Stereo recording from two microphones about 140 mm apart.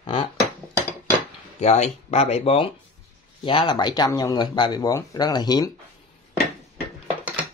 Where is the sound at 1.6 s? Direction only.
55° left (ahead or behind); by 5.7 s 30° left (ahead or behind).